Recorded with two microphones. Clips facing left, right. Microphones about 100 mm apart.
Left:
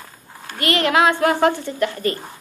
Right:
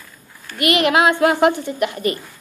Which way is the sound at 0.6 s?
10° right (ahead or behind).